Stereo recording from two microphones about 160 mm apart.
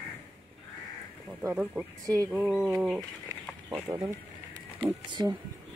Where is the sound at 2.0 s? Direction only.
20° right (ahead or behind).